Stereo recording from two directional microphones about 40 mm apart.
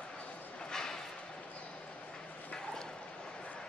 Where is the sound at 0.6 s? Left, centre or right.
Centre.